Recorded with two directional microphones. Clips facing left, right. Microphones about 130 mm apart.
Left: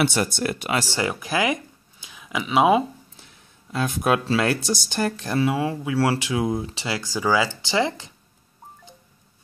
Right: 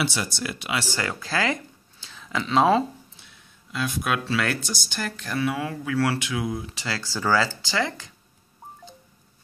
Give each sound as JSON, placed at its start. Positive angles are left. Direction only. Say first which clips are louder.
{"t": 0.0, "sound": "speech", "louder": "left 6 dB", "side_deg": 55}
{"t": 0.9, "sound": "speech", "louder": "left 3 dB", "side_deg": 20}
{"t": 3.7, "sound": "speech", "louder": "left 5 dB", "side_deg": 45}